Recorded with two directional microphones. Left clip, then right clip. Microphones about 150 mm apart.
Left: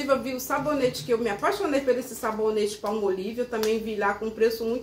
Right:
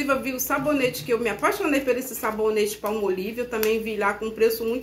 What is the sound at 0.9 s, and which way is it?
A woman's voice, 15° right (ahead or behind).